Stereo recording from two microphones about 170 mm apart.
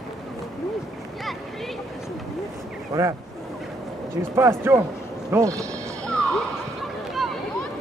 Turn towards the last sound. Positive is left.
turn(degrees=0)  # may be behind; listen again after turning